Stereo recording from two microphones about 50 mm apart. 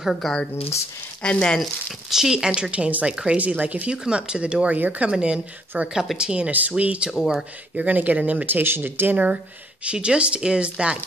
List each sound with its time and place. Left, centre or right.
0.2 s speech: centre
1.2 s speech: left
2.0 s speech: centre
3.3 s speech: right
3.9 s speech: centre
4.7 s speech: right
5.1 s speech: centre
7.1 s speech: centre
7.7 s speech: right
9.8 s speech: right